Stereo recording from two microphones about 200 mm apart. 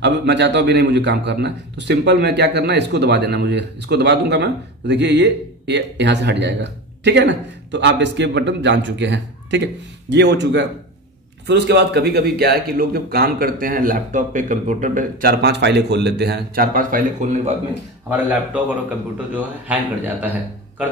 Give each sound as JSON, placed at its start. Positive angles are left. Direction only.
{"t": 0.0, "sound": "a man's voice", "side_deg": -60}
{"t": 18.1, "sound": "a man's voice", "side_deg": -5}